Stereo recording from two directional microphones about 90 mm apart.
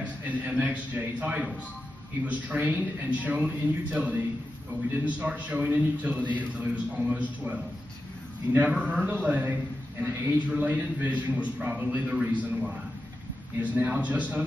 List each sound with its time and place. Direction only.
0.0 s a man's voice: 15° right (ahead or behind)